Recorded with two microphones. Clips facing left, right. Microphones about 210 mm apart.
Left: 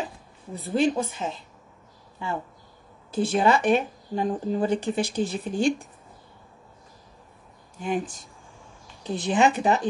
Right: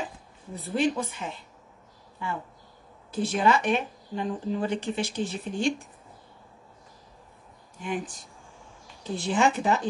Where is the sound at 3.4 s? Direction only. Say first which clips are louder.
Left 2 dB; 35° left (ahead or behind).